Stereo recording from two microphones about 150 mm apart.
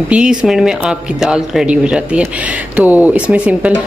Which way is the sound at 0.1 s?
5° right (ahead or behind).